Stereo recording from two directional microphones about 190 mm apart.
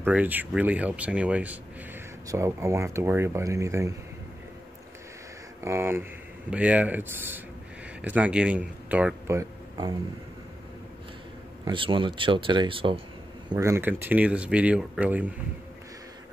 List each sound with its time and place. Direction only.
0.0 s speech: 10° right (ahead or behind)
5.6 s speech: 15° right (ahead or behind)
11.6 s speech: 25° right (ahead or behind)
13.5 s speech: 15° right (ahead or behind)